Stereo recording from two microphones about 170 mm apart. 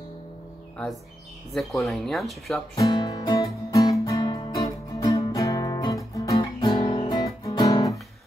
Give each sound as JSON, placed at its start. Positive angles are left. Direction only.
{"t": 1.5, "sound": "speech", "side_deg": 0}
{"t": 2.7, "sound": "music", "side_deg": 25}